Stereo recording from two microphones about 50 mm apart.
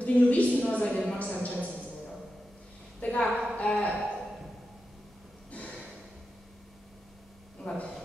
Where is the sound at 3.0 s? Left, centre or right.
Left.